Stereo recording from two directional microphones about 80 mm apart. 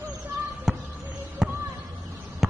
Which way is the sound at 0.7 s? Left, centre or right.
Centre.